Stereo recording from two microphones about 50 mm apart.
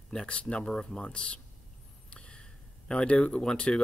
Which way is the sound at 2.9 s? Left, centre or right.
Centre.